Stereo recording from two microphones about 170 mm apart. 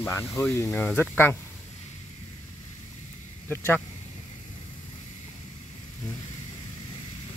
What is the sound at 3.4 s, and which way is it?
Speech, 10° left (ahead or behind).